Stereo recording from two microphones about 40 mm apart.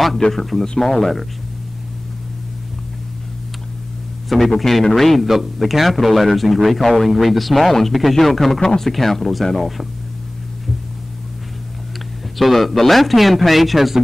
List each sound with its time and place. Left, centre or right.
0.2 s speech: centre
4.3 s a man's voice: centre
12.4 s a man's voice: centre